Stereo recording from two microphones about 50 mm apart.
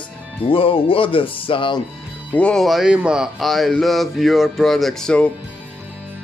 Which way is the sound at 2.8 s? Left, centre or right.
Centre.